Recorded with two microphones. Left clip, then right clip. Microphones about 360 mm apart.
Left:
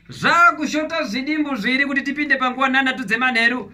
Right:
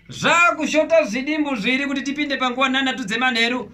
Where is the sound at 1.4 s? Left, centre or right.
Centre.